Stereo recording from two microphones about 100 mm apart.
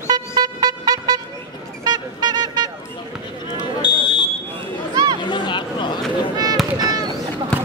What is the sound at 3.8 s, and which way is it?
Fire alarm, 45° left (ahead or behind).